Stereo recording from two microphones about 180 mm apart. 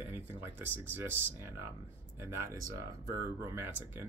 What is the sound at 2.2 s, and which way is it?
Speech, 15° right (ahead or behind).